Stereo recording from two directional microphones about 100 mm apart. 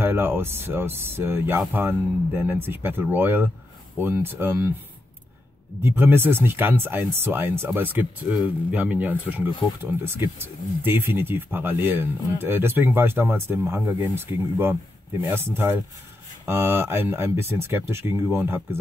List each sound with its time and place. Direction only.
0.0 s speech: 20° right (ahead or behind)
5.8 s speech: 25° right (ahead or behind)